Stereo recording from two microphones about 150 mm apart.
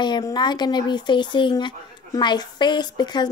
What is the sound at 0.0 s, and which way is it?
A woman's voice, 30° left (ahead or behind).